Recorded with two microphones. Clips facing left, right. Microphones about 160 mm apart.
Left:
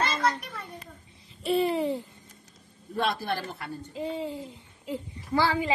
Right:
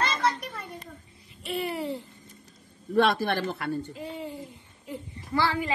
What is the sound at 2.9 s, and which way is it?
Speech, 75° right (ahead or behind).